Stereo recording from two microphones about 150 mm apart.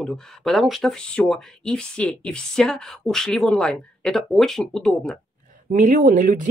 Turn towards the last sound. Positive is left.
turn(degrees=-60)  # may be behind; listen again after turning